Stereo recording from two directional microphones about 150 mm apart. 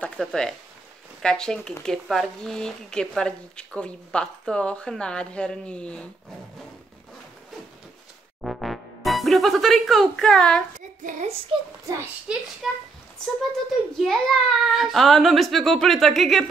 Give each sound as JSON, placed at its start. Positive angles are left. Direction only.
{"t": 0.0, "sound": "speech", "side_deg": 5}
{"t": 8.4, "sound": "music", "side_deg": 0}
{"t": 11.1, "sound": "speech", "side_deg": -50}
{"t": 11.8, "sound": "a child's voice", "side_deg": -20}
{"t": 12.3, "sound": "speech", "side_deg": -5}
{"t": 13.9, "sound": "speech", "side_deg": 0}